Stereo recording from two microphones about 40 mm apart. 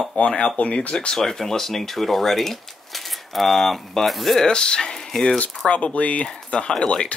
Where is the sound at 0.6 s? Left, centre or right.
Left.